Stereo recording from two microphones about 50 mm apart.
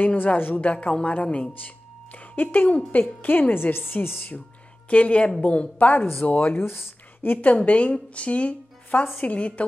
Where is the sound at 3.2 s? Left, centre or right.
Left.